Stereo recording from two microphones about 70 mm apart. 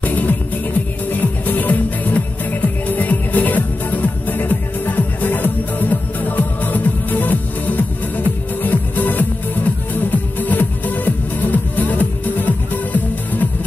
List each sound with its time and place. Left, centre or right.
0.0 s music: left